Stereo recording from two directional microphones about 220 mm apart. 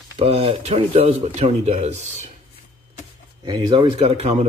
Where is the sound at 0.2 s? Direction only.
25° right (ahead or behind).